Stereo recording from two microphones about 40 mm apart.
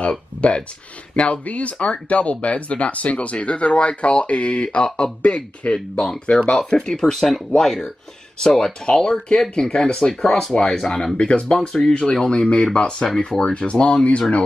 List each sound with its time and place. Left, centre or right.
0.0 s speech: left
5.6 s speech: left
5.9 s speech: left
10.8 s speech: centre
11.1 s speech: left